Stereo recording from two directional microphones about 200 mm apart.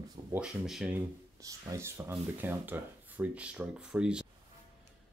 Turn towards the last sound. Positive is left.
turn(degrees=-5)  # may be behind; listen again after turning